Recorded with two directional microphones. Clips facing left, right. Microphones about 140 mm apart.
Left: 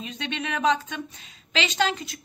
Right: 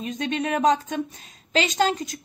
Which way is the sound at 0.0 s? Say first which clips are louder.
Right 6 dB; 45° right (ahead or behind).